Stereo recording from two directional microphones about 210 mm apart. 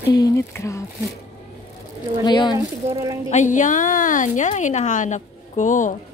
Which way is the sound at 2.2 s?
20° left (ahead or behind).